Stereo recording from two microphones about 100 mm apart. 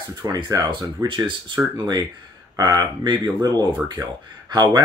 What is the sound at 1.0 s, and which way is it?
Speech, 55° right (ahead or behind).